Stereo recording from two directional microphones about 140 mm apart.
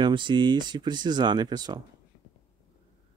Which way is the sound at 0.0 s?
35° right (ahead or behind).